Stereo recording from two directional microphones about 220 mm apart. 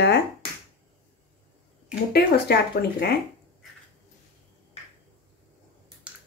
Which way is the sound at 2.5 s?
45° left (ahead or behind).